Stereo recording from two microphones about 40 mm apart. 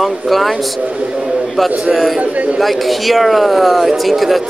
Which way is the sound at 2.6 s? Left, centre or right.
Centre.